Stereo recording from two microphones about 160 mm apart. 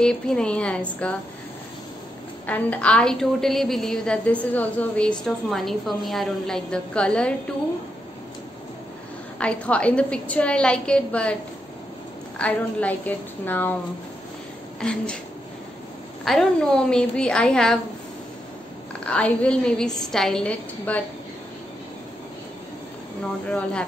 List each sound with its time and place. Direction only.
0.0 s a woman's voice: 5° left (ahead or behind)
2.4 s a woman's voice: 10° left (ahead or behind)
9.4 s a woman's voice: 10° left (ahead or behind)
12.4 s a woman's voice: 10° left (ahead or behind)
14.8 s a woman's voice: 5° left (ahead or behind)
16.3 s a woman's voice: 5° left (ahead or behind)
19.0 s a woman's voice: 10° left (ahead or behind)
23.2 s a woman's voice: 5° left (ahead or behind)